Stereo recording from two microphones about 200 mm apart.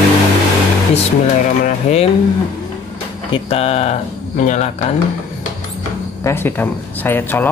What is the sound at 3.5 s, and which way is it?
Speech, 30° left (ahead or behind).